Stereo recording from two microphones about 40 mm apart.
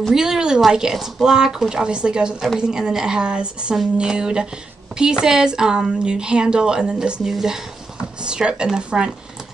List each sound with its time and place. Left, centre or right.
0.1 s speech: centre